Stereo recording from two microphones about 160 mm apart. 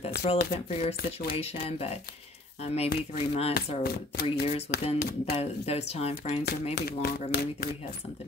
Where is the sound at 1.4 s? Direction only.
40° left (ahead or behind).